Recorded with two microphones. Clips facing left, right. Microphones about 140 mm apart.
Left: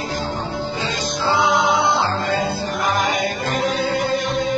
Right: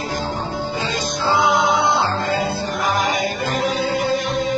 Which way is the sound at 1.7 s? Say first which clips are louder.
Even; centre (ahead or behind).